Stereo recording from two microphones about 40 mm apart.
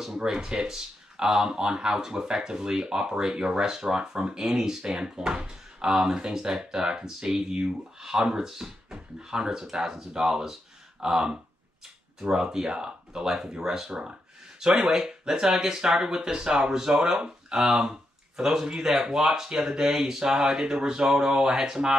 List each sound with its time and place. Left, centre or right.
0.2 s speech: centre
14.6 s speech: centre
17.8 s a sound: centre
18.8 s speech: centre